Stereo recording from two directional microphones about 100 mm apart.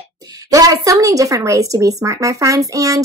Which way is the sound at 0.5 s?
35° right (ahead or behind).